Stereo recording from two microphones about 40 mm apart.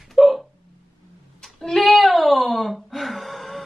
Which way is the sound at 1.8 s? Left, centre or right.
Centre.